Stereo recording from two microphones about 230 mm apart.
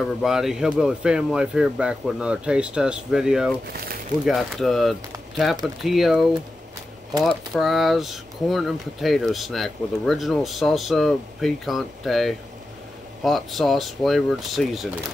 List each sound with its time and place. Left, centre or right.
0.2 s speech: centre
3.7 s speech: right
4.3 s speech: centre
7.2 s speech: centre